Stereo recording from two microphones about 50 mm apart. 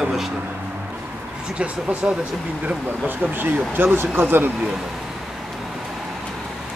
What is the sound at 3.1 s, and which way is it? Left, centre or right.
Speech, right.